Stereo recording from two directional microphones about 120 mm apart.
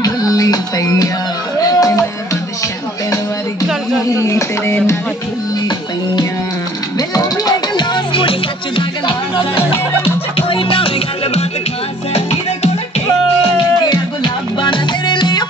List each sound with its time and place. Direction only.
0.0 s music: 30° left (ahead or behind)
4.2 s speech: 25° left (ahead or behind)
7.0 s music: 35° left (ahead or behind)
10.3 s music: 45° left (ahead or behind)
13.8 s music: 40° left (ahead or behind)